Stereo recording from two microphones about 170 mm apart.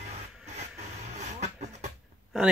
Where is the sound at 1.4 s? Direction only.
40° right (ahead or behind).